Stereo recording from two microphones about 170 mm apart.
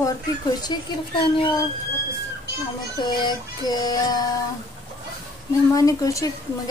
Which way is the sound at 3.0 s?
25° left (ahead or behind).